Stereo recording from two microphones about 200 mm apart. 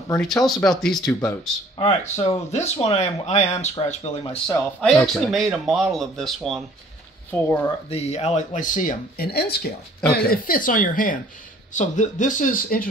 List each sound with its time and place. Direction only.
0.2 s speech: centre (ahead or behind)
1.8 s speech: 30° left (ahead or behind)
4.5 s speech: 5° left (ahead or behind)
7.9 s speech: 30° left (ahead or behind)